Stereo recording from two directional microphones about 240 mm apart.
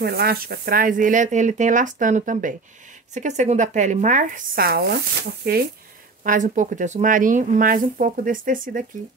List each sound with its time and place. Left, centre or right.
0.0 s speech: right